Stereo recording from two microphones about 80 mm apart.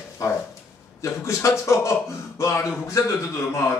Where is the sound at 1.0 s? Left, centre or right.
Left.